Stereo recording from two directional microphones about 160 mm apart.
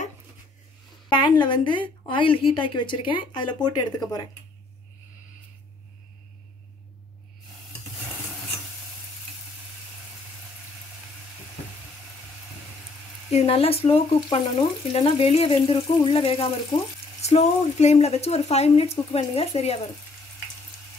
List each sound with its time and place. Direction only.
1.4 s a woman's voice: 30° left (ahead or behind)
13.3 s speech: 40° left (ahead or behind)